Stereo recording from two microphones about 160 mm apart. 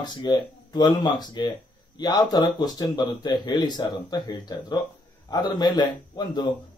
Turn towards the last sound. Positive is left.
turn(degrees=25)  # may be behind; listen again after turning